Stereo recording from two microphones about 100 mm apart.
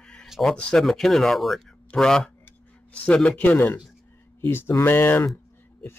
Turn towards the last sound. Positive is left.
turn(degrees=20)  # may be behind; listen again after turning